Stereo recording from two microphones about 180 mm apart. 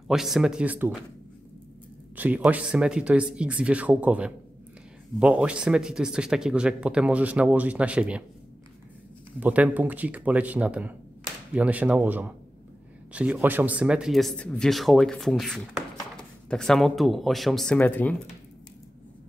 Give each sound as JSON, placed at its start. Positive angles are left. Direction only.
{"t": 0.1, "sound": "speech", "side_deg": 0}
{"t": 2.1, "sound": "speech", "side_deg": -10}
{"t": 9.4, "sound": "speech", "side_deg": -10}